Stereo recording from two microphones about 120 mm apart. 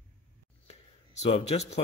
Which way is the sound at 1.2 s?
60° left (ahead or behind).